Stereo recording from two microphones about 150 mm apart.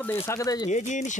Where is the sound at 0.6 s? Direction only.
55° left (ahead or behind).